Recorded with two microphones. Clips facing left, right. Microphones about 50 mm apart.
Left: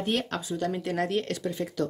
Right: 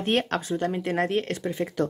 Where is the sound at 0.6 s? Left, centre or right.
Right.